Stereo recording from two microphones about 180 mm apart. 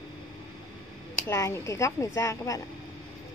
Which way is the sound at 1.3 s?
15° left (ahead or behind).